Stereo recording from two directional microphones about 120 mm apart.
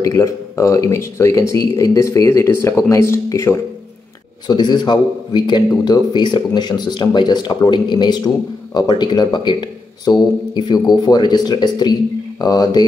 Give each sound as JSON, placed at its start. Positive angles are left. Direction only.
{"t": 0.0, "sound": "speech", "side_deg": 25}
{"t": 4.5, "sound": "speech", "side_deg": 35}